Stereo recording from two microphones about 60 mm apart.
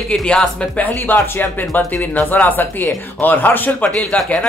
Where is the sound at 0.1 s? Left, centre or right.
Centre.